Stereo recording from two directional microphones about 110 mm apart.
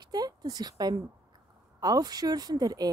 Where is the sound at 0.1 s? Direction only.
35° right (ahead or behind).